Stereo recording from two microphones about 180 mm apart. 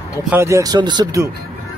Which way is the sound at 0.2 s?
10° right (ahead or behind).